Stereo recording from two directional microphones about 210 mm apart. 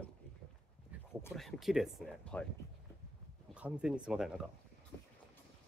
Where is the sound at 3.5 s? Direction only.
5° right (ahead or behind).